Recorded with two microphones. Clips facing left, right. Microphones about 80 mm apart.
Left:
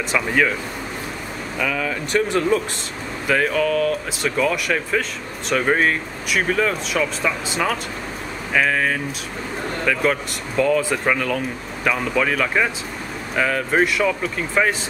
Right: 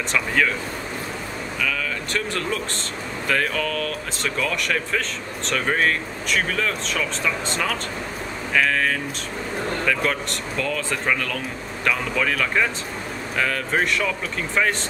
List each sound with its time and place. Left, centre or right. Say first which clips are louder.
0.1 s speech: left 3 dB; centre
1.6 s speech: left 4 dB; centre